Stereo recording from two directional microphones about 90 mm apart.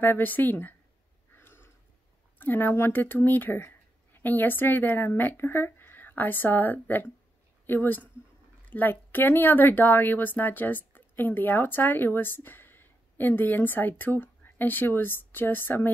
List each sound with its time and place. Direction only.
0.0 s speech: 20° left (ahead or behind)
1.3 s a sound: 25° left (ahead or behind)
2.3 s speech: 20° left (ahead or behind)